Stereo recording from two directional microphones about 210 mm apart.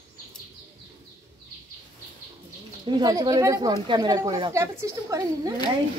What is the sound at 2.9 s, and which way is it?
Speech, 20° right (ahead or behind).